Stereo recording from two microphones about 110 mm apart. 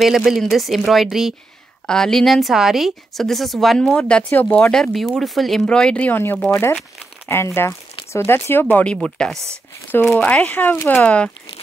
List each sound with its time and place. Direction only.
0.0 s a woman's voice: centre (ahead or behind)